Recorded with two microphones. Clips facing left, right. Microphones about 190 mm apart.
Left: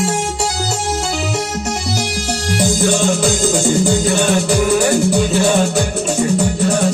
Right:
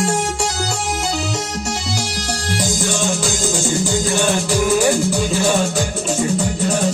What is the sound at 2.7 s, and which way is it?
Music, 55° left (ahead or behind).